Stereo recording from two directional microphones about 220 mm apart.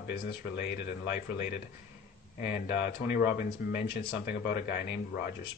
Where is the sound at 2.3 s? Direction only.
45° left (ahead or behind).